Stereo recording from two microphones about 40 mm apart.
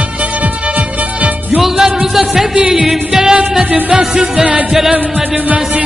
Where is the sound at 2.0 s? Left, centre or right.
Centre.